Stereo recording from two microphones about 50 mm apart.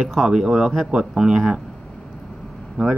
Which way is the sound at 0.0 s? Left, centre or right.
Centre.